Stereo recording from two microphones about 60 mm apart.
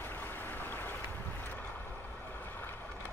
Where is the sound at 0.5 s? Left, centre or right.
Left.